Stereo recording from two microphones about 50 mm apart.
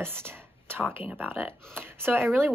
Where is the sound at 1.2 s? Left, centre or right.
Right.